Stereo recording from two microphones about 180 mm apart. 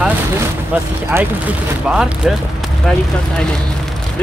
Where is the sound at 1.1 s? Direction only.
10° right (ahead or behind).